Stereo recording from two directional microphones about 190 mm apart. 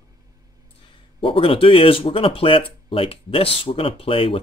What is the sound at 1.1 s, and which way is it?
Speech, 30° left (ahead or behind).